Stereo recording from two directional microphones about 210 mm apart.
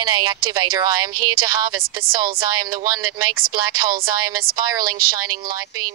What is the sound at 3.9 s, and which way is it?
Speech, 45° right (ahead or behind).